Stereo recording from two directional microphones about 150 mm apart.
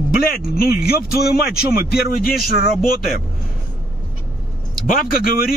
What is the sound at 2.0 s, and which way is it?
Speech, 80° left.